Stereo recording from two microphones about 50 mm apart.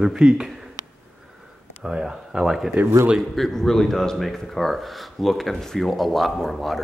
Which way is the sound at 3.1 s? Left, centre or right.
Centre.